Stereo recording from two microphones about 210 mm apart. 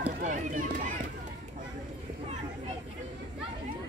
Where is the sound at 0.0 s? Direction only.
35° right (ahead or behind).